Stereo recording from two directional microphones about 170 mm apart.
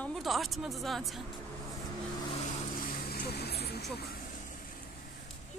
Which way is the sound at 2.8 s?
65° left (ahead or behind).